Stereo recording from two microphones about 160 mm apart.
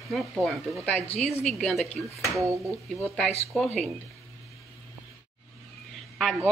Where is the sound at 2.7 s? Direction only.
Centre (ahead or behind).